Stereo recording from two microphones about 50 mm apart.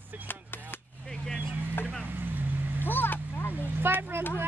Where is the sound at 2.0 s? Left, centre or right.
Right.